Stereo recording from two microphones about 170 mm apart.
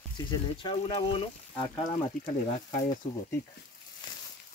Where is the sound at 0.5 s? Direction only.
30° left (ahead or behind).